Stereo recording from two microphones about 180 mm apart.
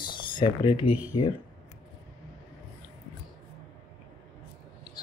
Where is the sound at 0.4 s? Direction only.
25° left (ahead or behind).